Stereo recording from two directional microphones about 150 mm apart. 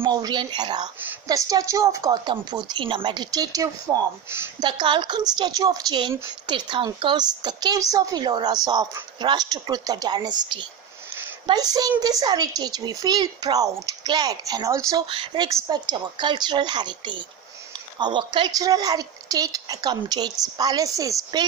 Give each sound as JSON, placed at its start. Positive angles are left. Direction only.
{"t": 0.0, "sound": "a woman's voice", "side_deg": -30}
{"t": 4.6, "sound": "a woman's voice", "side_deg": -30}
{"t": 15.0, "sound": "a woman's voice", "side_deg": -30}